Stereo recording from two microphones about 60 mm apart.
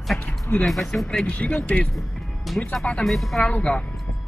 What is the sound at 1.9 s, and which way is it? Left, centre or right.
Music, centre.